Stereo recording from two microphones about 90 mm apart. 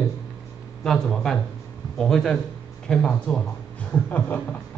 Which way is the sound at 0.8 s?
5° left (ahead or behind).